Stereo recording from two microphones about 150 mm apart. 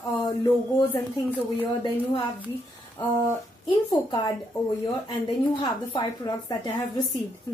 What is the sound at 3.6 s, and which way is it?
Speech, 25° left (ahead or behind).